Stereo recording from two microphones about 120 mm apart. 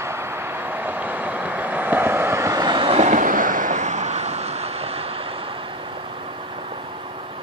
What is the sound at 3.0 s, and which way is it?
Vehicle, 90° right.